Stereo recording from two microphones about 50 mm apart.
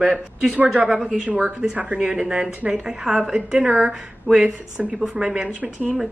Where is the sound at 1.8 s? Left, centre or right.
Right.